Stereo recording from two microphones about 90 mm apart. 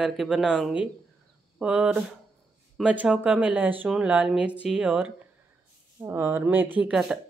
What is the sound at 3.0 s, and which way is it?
Speech, 15° right (ahead or behind).